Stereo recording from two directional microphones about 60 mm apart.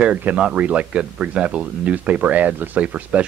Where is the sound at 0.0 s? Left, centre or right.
Right.